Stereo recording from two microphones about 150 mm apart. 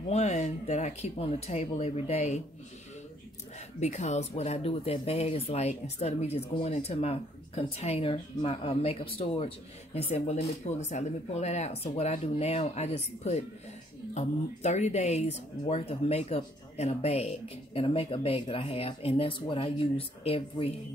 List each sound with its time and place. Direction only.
0.1 s speech: 50° left (ahead or behind)
3.8 s speech: 50° left (ahead or behind)